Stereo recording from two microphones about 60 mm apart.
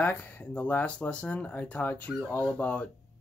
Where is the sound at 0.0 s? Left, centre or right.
Left.